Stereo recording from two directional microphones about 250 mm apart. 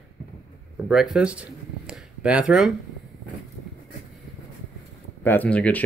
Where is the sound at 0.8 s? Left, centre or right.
Centre.